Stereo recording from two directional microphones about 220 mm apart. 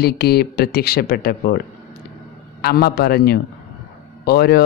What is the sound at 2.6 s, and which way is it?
Speech, 45° left (ahead or behind).